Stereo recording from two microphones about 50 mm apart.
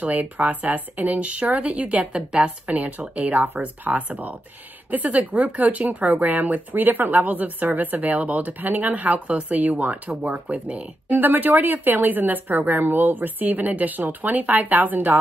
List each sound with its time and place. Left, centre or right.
0.0 s speech: right
11.1 s speech: right